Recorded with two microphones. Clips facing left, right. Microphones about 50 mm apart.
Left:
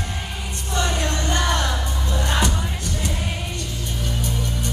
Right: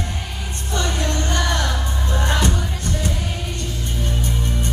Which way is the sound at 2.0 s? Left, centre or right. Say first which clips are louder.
Right 3 dB; right.